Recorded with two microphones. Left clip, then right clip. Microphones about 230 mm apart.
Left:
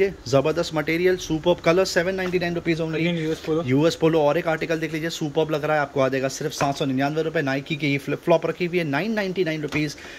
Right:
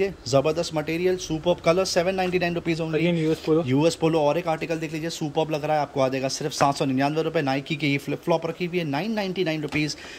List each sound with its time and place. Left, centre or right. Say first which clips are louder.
0.0 s speech: left 2 dB; centre
3.1 s speech: right 2 dB; right
3.6 s speech: left 2 dB; centre